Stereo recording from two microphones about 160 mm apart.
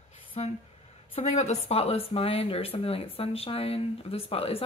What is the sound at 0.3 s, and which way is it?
Speech, 45° left (ahead or behind).